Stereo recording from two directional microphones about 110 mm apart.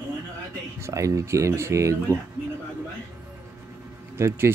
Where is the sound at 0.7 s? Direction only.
25° right (ahead or behind).